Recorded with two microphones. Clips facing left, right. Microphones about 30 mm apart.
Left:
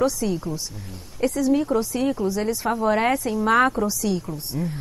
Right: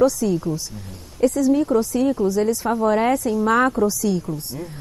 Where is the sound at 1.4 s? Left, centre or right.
Centre.